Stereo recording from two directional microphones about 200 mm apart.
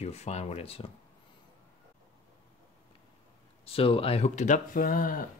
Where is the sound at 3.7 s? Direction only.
30° left (ahead or behind); by 5.1 s 45° left (ahead or behind).